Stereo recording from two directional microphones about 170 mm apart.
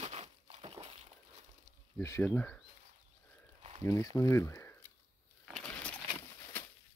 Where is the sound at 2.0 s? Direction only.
15° left (ahead or behind).